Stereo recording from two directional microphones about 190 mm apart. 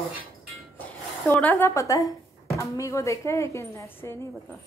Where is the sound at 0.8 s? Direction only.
10° left (ahead or behind).